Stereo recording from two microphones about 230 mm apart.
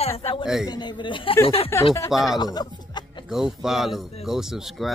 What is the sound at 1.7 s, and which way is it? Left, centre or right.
Speech, centre.